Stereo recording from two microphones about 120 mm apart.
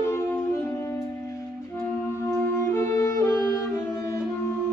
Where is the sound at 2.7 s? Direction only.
20° left (ahead or behind).